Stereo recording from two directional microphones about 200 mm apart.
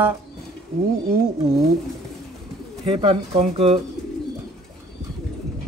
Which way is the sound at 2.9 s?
25° right (ahead or behind).